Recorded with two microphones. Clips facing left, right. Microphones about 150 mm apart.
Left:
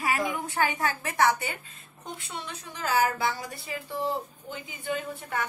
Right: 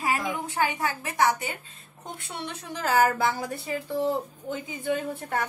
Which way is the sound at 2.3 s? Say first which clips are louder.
Right 8 dB; 65° right (ahead or behind).